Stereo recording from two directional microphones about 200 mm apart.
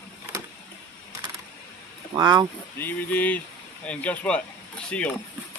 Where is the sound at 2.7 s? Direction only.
10° left (ahead or behind).